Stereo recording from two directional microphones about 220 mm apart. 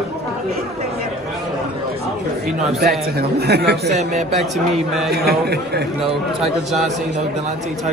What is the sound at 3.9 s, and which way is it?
Speech, 30° right (ahead or behind).